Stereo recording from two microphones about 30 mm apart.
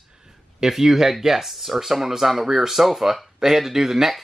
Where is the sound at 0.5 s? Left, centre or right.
Centre.